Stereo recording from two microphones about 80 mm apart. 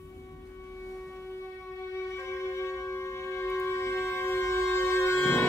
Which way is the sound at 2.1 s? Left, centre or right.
Left.